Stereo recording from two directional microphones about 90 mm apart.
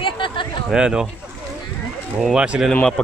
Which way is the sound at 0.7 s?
5° right (ahead or behind).